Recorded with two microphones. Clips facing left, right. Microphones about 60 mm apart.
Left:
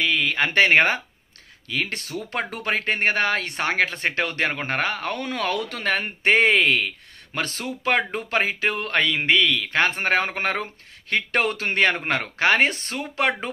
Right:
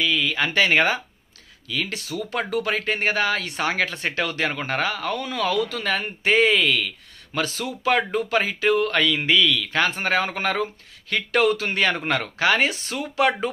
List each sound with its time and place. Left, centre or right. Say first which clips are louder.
0.0 s speech: left 1 dB; left